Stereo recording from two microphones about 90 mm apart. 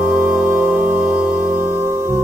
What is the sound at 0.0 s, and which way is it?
Music, 15° right (ahead or behind).